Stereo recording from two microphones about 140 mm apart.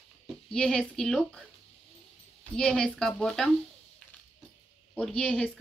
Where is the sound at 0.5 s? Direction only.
5° left (ahead or behind).